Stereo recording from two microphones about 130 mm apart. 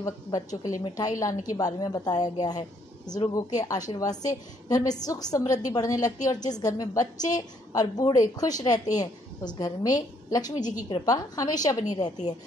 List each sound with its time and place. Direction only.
0.0 s a woman's voice: 25° left (ahead or behind)